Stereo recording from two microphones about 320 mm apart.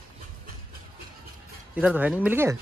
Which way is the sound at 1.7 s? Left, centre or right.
Centre.